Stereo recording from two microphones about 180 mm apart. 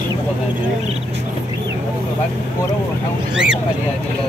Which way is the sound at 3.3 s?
5° right (ahead or behind).